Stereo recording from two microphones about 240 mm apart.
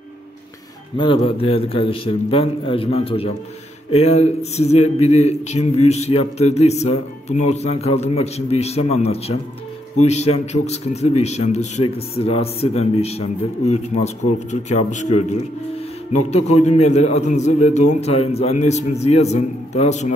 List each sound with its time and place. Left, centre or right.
0.9 s speech: left
16.3 s speech: left